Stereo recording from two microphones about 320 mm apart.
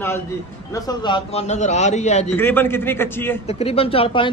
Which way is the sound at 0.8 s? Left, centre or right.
Centre.